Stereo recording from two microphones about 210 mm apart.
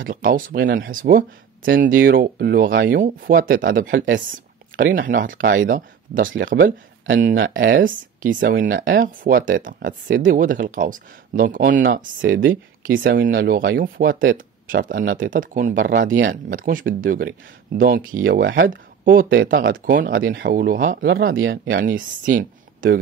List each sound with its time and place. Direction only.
0.1 s speech: 40° right (ahead or behind)
4.9 s speech: 40° right (ahead or behind)
8.7 s speech: 55° right (ahead or behind)
9.0 s speech: 40° right (ahead or behind)
18.2 s speech: 60° right (ahead or behind)
18.7 s speech: 40° right (ahead or behind)
19.2 s speech: 65° right (ahead or behind)
19.5 s speech: 40° right (ahead or behind)
21.4 s speech: 65° right (ahead or behind)
21.8 s speech: 40° right (ahead or behind)